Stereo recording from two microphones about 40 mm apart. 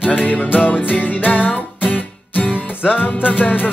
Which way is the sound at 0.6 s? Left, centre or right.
Left.